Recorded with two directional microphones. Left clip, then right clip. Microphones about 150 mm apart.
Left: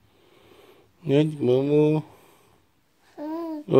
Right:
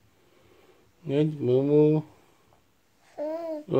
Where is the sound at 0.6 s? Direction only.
50° left (ahead or behind).